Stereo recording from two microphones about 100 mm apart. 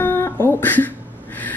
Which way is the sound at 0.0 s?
20° left (ahead or behind).